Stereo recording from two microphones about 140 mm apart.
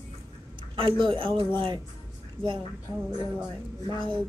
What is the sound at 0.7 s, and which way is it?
Speech, 40° right (ahead or behind).